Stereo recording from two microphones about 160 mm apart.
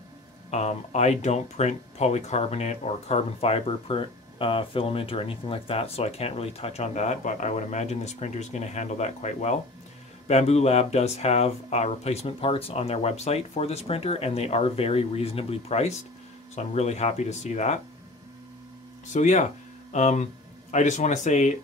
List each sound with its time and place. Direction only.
0.5 s speech: 45° left (ahead or behind)
19.1 s speech: 50° left (ahead or behind)